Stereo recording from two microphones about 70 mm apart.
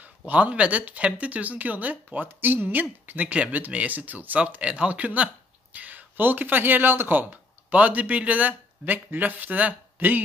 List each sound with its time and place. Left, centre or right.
0.3 s speech: centre